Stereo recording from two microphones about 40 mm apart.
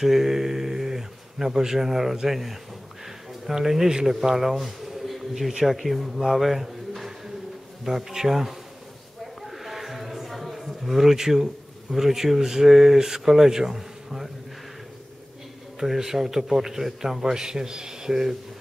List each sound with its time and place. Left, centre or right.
0.0 s a man's voice: centre
9.5 s a sound: centre
11.9 s a man's voice: centre
15.8 s a man's voice: centre